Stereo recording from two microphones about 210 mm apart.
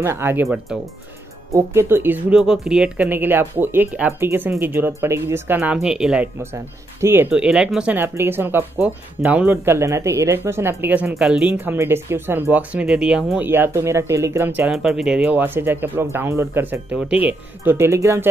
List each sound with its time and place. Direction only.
0.0 s speech: 10° right (ahead or behind)